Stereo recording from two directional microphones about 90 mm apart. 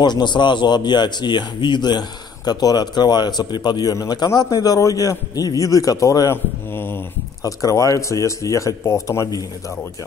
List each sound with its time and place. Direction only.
0.0 s a man's voice: 55° left (ahead or behind); by 6.3 s 40° left (ahead or behind)
6.3 s mantra: 25° left (ahead or behind)
7.4 s speech: 35° left (ahead or behind)